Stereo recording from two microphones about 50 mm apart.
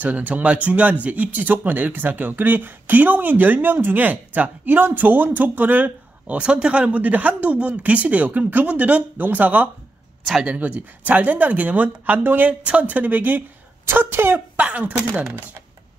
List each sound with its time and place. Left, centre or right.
0.0 s speech: right
12.6 s speech: right
13.8 s speech: right
14.6 s speech: right